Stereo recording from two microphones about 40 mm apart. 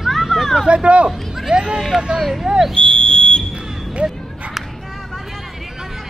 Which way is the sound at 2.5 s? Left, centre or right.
Centre.